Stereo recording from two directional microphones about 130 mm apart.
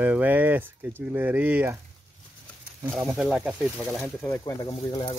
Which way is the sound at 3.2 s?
Centre (ahead or behind).